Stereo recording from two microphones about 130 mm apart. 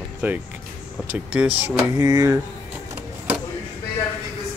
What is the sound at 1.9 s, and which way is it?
Speech, 25° right (ahead or behind).